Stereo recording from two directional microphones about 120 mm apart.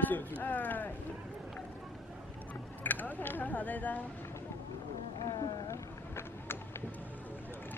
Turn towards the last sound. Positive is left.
turn(degrees=20)  # may be behind; listen again after turning